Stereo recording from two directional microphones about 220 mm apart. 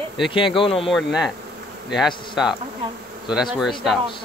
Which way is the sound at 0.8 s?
Centre (ahead or behind).